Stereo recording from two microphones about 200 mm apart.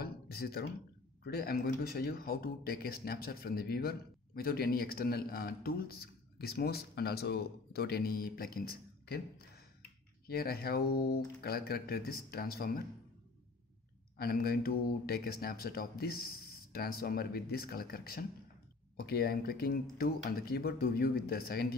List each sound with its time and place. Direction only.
0.0 s a sound: 50° left (ahead or behind)
1.2 s a man's voice: 50° left (ahead or behind)
10.2 s a man's voice: 50° left (ahead or behind)
14.1 s a man's voice: 50° left (ahead or behind)